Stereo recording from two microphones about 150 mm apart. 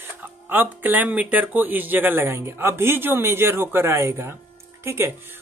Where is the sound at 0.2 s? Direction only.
10° right (ahead or behind).